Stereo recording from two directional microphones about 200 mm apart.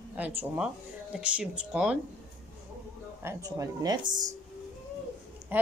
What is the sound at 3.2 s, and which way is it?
A woman's voice, 15° right (ahead or behind).